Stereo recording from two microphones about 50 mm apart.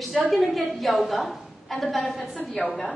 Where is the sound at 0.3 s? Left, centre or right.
Centre.